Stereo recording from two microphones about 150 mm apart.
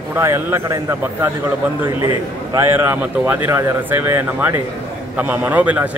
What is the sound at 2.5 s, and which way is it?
Speech, 15° right (ahead or behind).